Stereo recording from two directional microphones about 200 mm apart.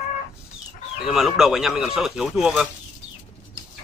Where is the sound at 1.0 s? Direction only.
Centre (ahead or behind).